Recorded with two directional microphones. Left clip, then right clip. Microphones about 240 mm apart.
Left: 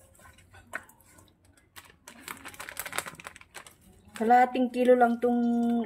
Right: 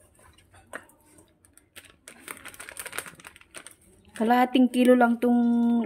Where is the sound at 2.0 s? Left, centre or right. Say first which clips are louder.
Even; centre.